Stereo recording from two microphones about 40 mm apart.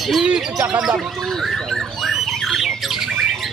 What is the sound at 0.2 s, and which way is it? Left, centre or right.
Speech, right.